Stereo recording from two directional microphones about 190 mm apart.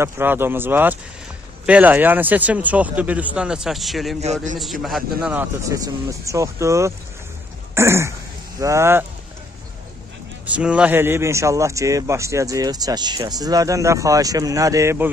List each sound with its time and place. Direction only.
0.0 s a man's voice: 10° right (ahead or behind)
4.2 s a man's voice: 35° right (ahead or behind)
5.2 s a man's voice: 10° right (ahead or behind)
7.7 s a sound: 15° right (ahead or behind)
8.5 s a man's voice: 15° right (ahead or behind)
10.5 s a man's voice: 5° right (ahead or behind)